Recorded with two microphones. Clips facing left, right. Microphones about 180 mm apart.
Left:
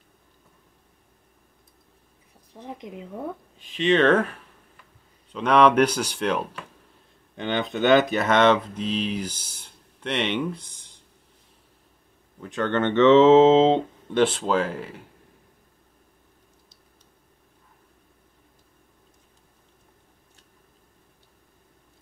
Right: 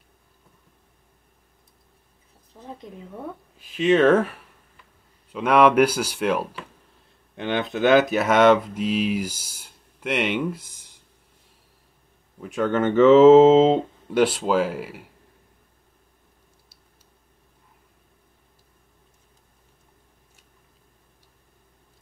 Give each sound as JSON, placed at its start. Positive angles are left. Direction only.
{"t": 2.6, "sound": "speech", "side_deg": 15}
{"t": 3.5, "sound": "speech", "side_deg": -5}
{"t": 12.4, "sound": "speech", "side_deg": -10}